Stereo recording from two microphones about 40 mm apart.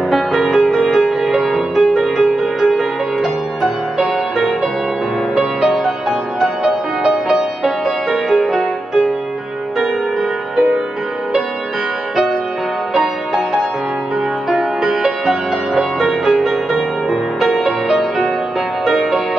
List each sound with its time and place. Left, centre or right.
0.1 s music: centre
0.5 s music: centre
5.3 s music: centre
10.5 s music: centre
12.9 s music: centre